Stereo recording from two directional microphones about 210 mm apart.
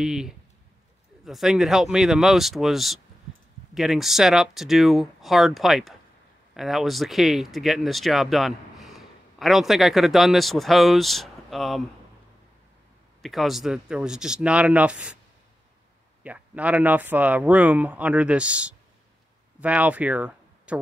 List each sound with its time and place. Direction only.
0.0 s speech: 5° right (ahead or behind)
13.2 s speech: centre (ahead or behind)
16.2 s speech: 5° right (ahead or behind)